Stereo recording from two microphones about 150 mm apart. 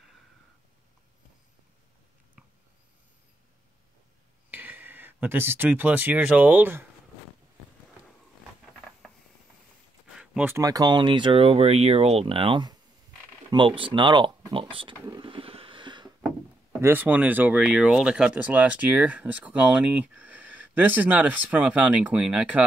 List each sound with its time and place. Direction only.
4.5 s speech: 15° right (ahead or behind)
10.1 s speech: 10° right (ahead or behind); by 15.0 s 35° right (ahead or behind)
15.1 s a sound: 35° right (ahead or behind)
16.8 s speech: 10° right (ahead or behind)